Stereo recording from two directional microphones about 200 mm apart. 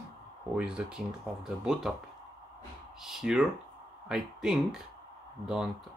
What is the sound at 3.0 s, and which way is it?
Speech, centre (ahead or behind).